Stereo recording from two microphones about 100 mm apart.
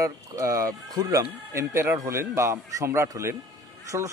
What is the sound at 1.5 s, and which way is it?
A man's voice, 30° right (ahead or behind).